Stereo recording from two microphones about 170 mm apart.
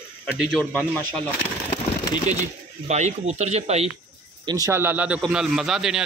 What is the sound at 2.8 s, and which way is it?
Speech, 40° right (ahead or behind).